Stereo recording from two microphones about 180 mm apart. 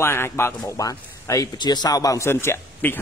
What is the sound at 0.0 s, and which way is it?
A man's voice, 15° left (ahead or behind).